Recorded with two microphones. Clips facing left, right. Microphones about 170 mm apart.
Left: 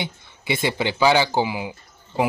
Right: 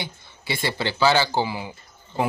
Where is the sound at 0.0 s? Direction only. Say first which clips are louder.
Left 4 dB; 20° left (ahead or behind).